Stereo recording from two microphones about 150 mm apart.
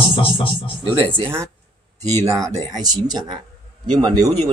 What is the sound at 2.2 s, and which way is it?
A man's voice, 20° right (ahead or behind).